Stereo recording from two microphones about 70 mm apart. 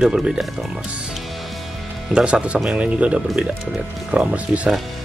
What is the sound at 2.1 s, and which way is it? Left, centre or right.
Speech, centre.